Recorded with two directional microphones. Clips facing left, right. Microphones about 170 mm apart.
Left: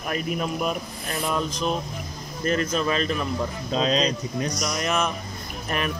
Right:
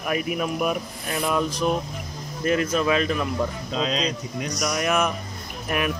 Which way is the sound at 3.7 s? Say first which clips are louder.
Left 4 dB; 35° left (ahead or behind).